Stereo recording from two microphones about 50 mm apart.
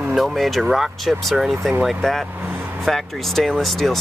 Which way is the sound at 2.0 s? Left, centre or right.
Centre.